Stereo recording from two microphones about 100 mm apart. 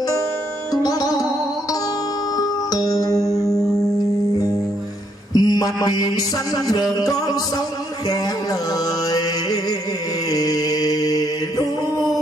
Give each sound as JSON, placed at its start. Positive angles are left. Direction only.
{"t": 0.8, "sound": "music", "side_deg": 40}
{"t": 2.3, "sound": "music", "side_deg": 40}
{"t": 5.3, "sound": "mantra", "side_deg": 40}
{"t": 8.1, "sound": "music", "side_deg": 40}
{"t": 10.3, "sound": "mantra", "side_deg": 40}